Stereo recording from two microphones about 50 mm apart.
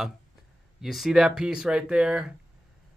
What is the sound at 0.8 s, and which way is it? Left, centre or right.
Speech, centre.